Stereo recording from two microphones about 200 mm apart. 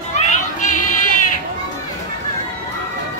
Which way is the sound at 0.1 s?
35° left (ahead or behind).